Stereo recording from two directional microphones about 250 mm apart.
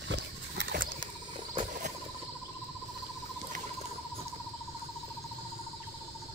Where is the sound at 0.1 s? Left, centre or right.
Right.